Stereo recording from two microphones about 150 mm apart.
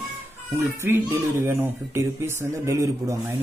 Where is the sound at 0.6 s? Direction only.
15° right (ahead or behind).